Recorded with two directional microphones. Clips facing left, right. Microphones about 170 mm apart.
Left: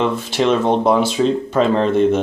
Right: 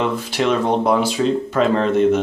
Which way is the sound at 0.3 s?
25° left (ahead or behind).